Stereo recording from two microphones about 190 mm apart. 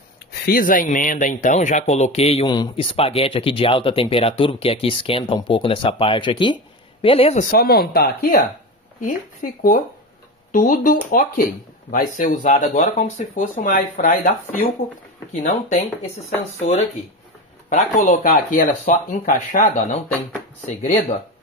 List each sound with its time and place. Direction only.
0.3 s speech: 55° left (ahead or behind); by 7.4 s 30° left (ahead or behind)
7.5 s speech: 50° left (ahead or behind)
16.5 s speech: 35° left (ahead or behind)